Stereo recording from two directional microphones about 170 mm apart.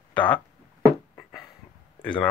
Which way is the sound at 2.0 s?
5° left (ahead or behind).